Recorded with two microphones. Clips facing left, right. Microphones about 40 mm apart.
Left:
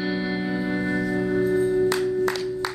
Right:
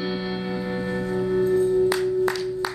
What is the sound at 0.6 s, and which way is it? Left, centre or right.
Music, left.